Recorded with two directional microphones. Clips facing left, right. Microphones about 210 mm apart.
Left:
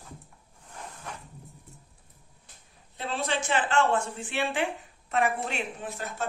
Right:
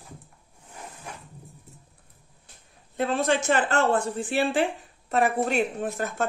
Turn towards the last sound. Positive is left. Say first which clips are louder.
# right 7 dB
turn(degrees=-45)  # may be behind; listen again after turning